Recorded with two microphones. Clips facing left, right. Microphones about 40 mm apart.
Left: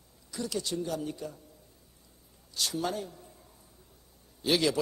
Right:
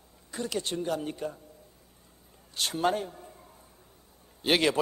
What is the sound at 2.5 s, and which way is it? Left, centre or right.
Speech, right.